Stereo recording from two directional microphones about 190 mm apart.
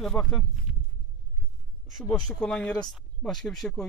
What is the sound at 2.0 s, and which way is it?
Speech, centre (ahead or behind).